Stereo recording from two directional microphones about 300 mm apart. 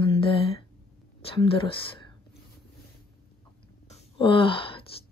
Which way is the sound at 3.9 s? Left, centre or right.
Centre.